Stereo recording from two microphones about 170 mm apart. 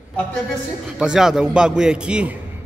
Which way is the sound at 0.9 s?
5° right (ahead or behind).